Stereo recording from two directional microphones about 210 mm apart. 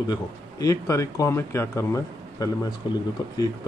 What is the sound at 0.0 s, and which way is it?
Speech, 20° left (ahead or behind).